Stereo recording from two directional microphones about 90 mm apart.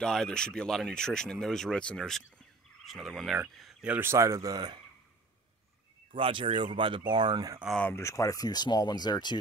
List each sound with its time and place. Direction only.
0.0 s speech: 5° left (ahead or behind)
3.8 s speech: 20° right (ahead or behind); by 4.7 s 45° right (ahead or behind)
6.1 s speech: 75° right (ahead or behind); by 7.6 s 50° right (ahead or behind)
7.9 s speech: 35° left (ahead or behind); by 9.4 s 55° left (ahead or behind)